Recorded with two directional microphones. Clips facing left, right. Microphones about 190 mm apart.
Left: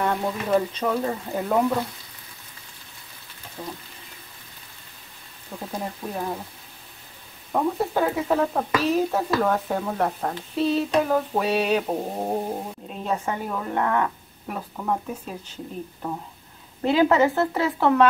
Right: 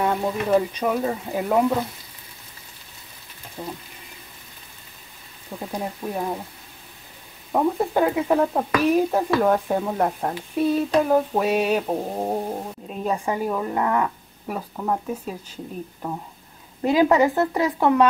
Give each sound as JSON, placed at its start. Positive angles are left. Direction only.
{"t": 0.0, "sound": "a woman's voice", "side_deg": -10}
{"t": 3.6, "sound": "a woman's voice", "side_deg": -10}
{"t": 5.7, "sound": "a woman's voice", "side_deg": -10}
{"t": 7.5, "sound": "a woman's voice", "side_deg": -10}